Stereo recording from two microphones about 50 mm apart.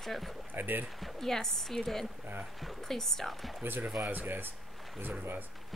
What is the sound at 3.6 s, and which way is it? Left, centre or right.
Speech, right.